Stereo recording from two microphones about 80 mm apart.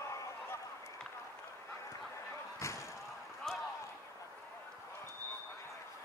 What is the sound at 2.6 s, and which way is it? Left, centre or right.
Slam, left.